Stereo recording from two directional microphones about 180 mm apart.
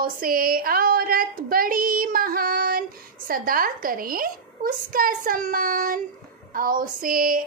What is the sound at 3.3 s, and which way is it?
Female singing, 55° right (ahead or behind).